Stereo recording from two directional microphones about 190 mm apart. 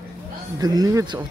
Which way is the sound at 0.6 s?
20° right (ahead or behind).